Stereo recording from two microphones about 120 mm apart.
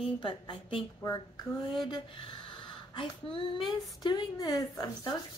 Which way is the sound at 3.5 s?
40° left (ahead or behind).